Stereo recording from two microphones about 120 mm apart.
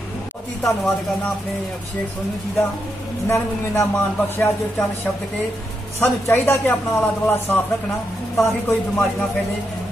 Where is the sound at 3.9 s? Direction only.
15° left (ahead or behind).